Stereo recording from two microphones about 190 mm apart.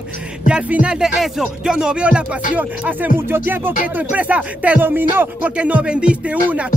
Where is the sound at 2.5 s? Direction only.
10° right (ahead or behind).